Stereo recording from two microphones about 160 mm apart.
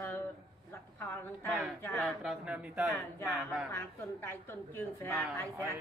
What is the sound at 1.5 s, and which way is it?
Speech, centre (ahead or behind).